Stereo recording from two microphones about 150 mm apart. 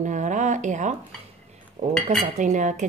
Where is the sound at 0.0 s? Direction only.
55° right (ahead or behind).